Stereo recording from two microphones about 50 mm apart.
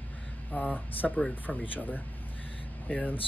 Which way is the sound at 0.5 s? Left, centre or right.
Left.